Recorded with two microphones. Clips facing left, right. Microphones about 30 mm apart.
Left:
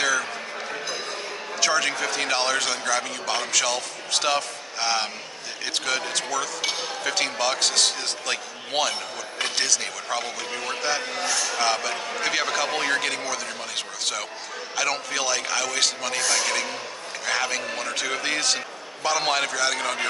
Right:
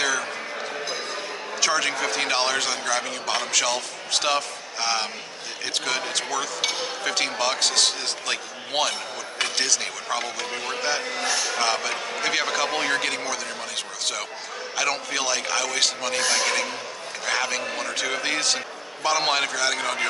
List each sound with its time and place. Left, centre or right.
0.0 s a sound: centre
1.6 s a man's voice: centre
14.8 s a man's voice: centre